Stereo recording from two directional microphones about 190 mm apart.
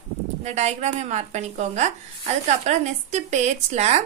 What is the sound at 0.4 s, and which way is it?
Speech, 35° right (ahead or behind).